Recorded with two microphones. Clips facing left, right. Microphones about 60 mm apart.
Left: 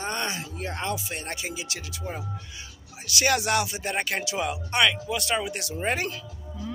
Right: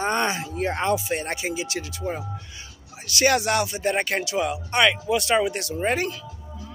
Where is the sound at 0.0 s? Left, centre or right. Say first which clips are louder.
Right 7 dB; right.